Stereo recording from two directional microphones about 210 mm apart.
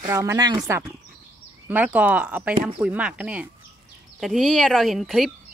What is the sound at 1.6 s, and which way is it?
Speech, 5° right (ahead or behind).